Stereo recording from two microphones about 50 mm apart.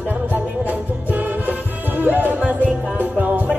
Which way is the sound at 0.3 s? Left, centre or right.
Right.